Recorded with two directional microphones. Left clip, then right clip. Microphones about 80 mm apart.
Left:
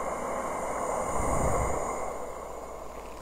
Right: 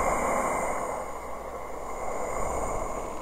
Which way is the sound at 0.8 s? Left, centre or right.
Centre.